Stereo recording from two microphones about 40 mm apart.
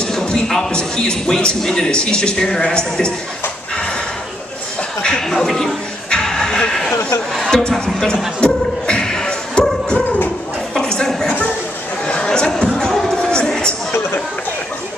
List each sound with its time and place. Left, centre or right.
0.0 s a sound: centre
0.7 s a man's voice: left
5.0 s speech: centre
6.2 s a sound: centre
7.5 s speech: centre
8.4 s speech: left
9.0 s music: centre
10.8 s a sound: centre
12.3 s music: centre